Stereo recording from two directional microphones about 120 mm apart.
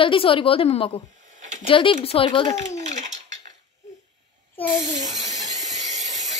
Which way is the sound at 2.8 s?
80° right.